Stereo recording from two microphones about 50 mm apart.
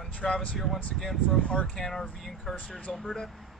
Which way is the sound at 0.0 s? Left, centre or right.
Centre.